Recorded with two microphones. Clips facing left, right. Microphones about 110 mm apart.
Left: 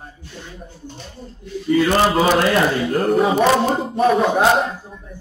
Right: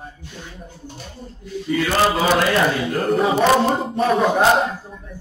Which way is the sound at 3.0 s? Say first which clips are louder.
Left 2 dB; centre (ahead or behind).